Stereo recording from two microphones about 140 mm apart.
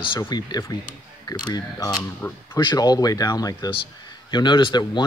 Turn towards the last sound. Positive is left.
turn(degrees=30)  # may be behind; listen again after turning